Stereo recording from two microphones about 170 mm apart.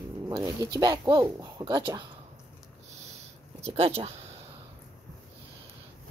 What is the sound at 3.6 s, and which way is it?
Speech, 35° right (ahead or behind).